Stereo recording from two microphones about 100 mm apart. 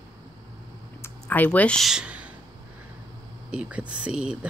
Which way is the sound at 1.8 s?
10° right (ahead or behind).